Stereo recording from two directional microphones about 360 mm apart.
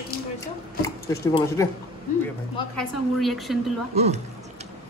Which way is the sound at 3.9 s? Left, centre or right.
Centre.